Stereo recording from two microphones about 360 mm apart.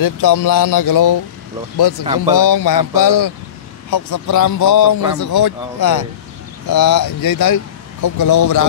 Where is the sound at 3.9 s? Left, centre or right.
Left.